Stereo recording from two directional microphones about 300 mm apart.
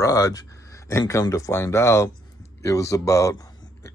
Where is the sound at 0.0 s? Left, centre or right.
Centre.